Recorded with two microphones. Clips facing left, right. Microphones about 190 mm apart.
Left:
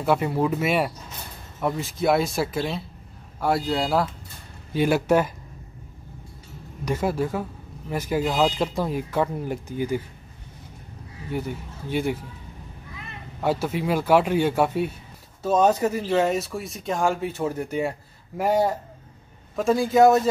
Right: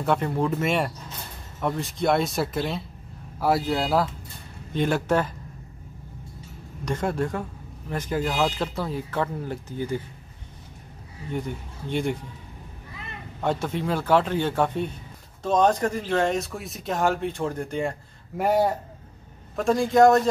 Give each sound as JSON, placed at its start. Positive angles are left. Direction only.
{"t": 0.0, "sound": "speech", "side_deg": 5}
{"t": 6.8, "sound": "speech", "side_deg": 5}
{"t": 11.3, "sound": "speech", "side_deg": 5}
{"t": 13.4, "sound": "speech", "side_deg": 5}